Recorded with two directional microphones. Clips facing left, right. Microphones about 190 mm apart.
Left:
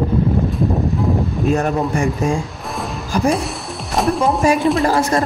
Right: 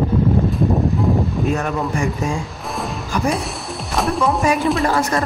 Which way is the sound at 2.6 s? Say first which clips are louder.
Even; centre (ahead or behind).